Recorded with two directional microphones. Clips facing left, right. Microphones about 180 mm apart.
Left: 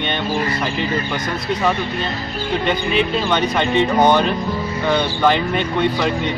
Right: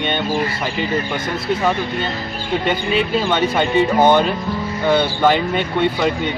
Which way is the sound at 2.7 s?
5° right (ahead or behind).